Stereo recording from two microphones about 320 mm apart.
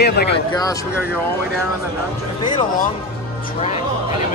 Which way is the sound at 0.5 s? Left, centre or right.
Centre.